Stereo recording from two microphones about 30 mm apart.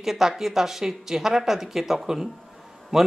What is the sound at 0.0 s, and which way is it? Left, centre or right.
Speech, centre.